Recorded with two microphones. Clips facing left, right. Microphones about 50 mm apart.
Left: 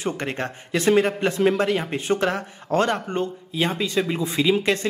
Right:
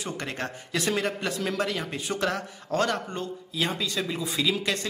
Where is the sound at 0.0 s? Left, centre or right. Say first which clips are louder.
Left 6 dB; left.